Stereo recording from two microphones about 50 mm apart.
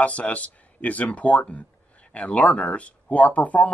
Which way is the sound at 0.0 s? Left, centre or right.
Left.